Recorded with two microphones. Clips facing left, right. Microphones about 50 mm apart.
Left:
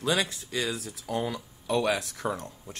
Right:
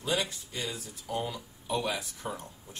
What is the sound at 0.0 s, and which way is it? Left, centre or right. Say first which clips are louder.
Speech: left 4 dB; left.